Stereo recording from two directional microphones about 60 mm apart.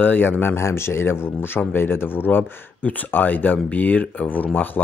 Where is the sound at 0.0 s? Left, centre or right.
Left.